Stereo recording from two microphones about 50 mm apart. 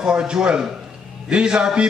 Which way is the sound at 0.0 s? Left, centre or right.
Centre.